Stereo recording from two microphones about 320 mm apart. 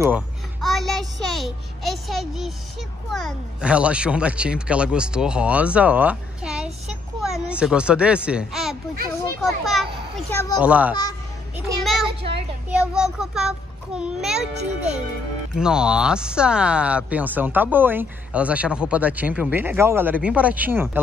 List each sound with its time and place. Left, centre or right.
0.7 s a child's voice: centre
11.5 s a sound: centre
12.2 s a child's voice: centre
12.6 s speech: centre
14.6 s a child's voice: right
15.5 s speech: centre